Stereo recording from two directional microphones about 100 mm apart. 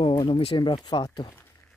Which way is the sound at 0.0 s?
60° left (ahead or behind).